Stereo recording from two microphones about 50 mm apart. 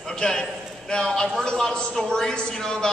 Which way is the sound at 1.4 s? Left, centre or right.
Centre.